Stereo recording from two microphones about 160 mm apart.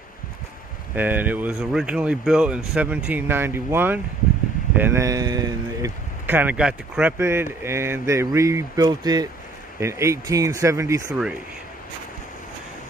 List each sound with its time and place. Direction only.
0.9 s speech: 10° right (ahead or behind)
6.2 s speech: 10° right (ahead or behind)